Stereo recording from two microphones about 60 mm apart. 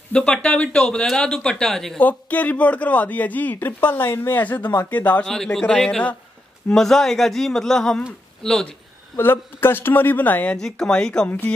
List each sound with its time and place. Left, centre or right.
0.1 s speech: centre
2.0 s speech: left
5.2 s speech: centre
9.1 s speech: left
10.5 s speech: centre
11.2 s speech: left